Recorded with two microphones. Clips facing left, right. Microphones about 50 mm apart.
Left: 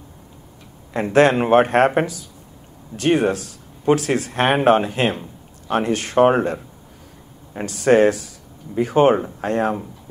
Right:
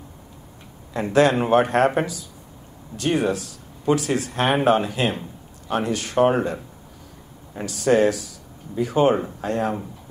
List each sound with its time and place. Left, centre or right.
0.9 s speech: left
3.0 s speech: left
7.6 s speech: left